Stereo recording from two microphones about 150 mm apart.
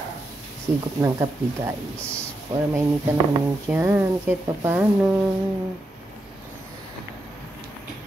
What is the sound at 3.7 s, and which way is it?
Speech, 15° right (ahead or behind).